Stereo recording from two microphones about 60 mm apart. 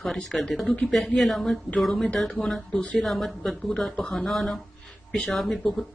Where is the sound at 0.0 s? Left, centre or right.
Centre.